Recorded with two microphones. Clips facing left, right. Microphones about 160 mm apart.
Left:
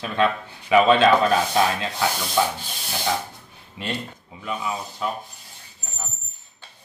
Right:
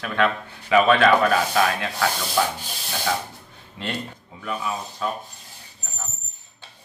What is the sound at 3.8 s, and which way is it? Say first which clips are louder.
Speech: even; 15° left (ahead or behind).